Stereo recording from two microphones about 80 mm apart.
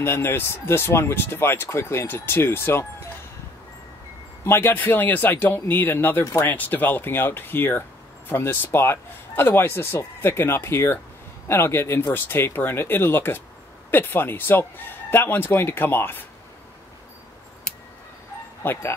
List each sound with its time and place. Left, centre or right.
0.0 s speech: left
4.5 s speech: left
18.6 s speech: left